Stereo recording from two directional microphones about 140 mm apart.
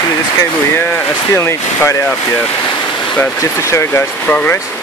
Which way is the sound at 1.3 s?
20° left (ahead or behind).